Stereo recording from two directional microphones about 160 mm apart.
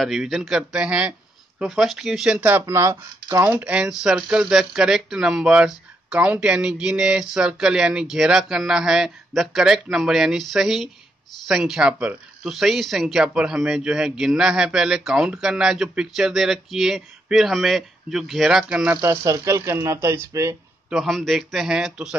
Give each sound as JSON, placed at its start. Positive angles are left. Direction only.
{"t": 0.0, "sound": "speech", "side_deg": 0}
{"t": 20.9, "sound": "speech", "side_deg": 0}